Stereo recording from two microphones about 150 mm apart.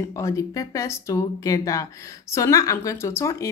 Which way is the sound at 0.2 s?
20° left (ahead or behind).